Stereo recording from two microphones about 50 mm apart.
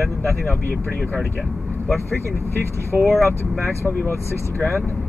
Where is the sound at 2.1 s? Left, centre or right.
Right.